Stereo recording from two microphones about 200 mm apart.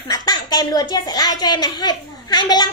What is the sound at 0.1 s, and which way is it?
A woman's voice, 20° left (ahead or behind).